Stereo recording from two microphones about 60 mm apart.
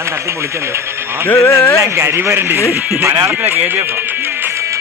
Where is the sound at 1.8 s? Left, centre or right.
Right.